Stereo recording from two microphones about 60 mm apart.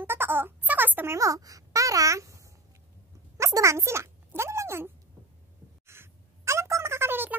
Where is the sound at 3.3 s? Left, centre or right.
Right.